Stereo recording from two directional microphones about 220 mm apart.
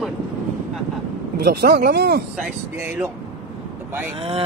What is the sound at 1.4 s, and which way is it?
Speech, 45° right (ahead or behind).